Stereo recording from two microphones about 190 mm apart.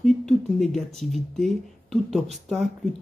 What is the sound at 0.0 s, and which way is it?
Speech, centre (ahead or behind).